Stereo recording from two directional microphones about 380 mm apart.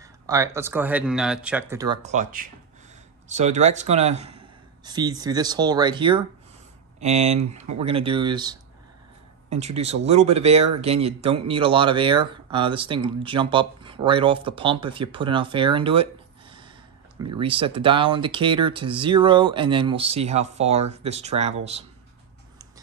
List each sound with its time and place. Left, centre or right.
0.0 s speech: centre